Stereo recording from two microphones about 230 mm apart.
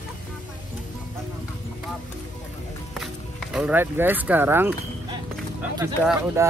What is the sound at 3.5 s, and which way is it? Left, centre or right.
Speech, centre.